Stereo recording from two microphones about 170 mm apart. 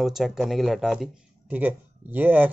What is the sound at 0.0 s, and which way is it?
A man's voice, centre (ahead or behind).